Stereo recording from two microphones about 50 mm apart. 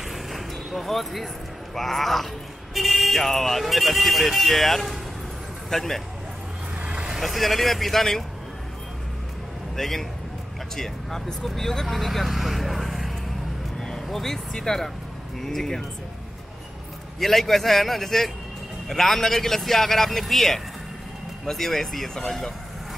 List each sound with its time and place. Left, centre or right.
0.1 s basketball bounce: centre
1.8 s speech: centre
6.8 s vehicle: right
7.1 s speech: centre
9.8 s speech: centre
13.7 s vehicle: centre
14.0 s speech: centre
17.2 s speech: centre